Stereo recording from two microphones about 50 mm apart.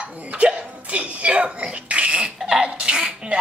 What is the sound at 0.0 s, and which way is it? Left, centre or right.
Hiccup, right.